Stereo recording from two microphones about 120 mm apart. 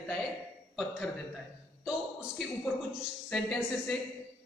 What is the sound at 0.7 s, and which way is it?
Speech, centre (ahead or behind).